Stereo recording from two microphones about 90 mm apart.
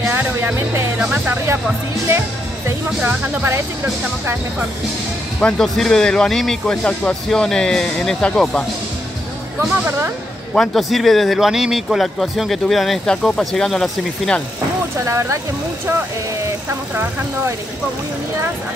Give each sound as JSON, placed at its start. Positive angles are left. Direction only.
{"t": 0.0, "sound": "music", "side_deg": -25}
{"t": 1.2, "sound": "speech", "side_deg": -25}
{"t": 2.0, "sound": "music", "side_deg": -30}
{"t": 3.4, "sound": "speech", "side_deg": -30}
{"t": 5.6, "sound": "speech", "side_deg": 5}
{"t": 9.7, "sound": "speech", "side_deg": -25}
{"t": 10.5, "sound": "speech", "side_deg": 5}
{"t": 15.0, "sound": "speech", "side_deg": -35}
{"t": 16.6, "sound": "speech", "side_deg": -20}